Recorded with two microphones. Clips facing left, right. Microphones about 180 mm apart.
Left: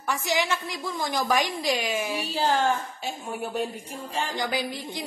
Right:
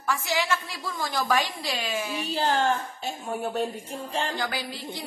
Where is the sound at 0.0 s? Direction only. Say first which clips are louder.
Left 1 dB; 20° left (ahead or behind).